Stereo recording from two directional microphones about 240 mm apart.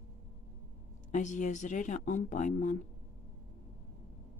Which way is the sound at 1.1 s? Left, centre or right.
Left.